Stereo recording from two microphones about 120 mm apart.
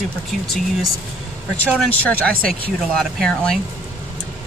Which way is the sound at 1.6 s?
10° left (ahead or behind).